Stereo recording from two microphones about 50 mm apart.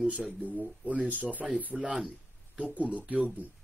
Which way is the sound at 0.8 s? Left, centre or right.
Right.